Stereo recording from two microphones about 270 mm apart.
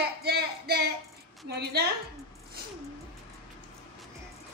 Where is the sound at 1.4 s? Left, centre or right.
Right.